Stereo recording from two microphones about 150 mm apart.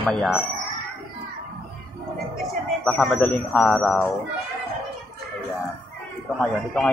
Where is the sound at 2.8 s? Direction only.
5° left (ahead or behind).